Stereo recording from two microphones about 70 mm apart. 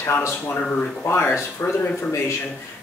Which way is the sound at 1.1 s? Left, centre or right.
Left.